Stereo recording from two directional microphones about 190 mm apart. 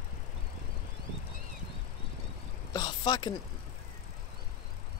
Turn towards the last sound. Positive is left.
turn(degrees=25)  # may be behind; listen again after turning